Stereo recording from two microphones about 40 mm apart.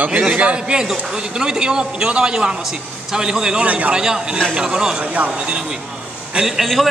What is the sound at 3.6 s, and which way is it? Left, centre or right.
Speech, right.